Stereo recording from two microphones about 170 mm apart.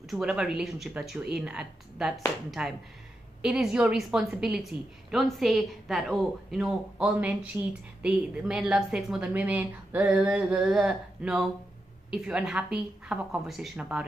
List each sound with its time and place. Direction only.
0.1 s a woman's voice: 5° right (ahead or behind)